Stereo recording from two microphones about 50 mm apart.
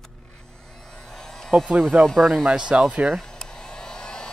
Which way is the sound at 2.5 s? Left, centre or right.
Right.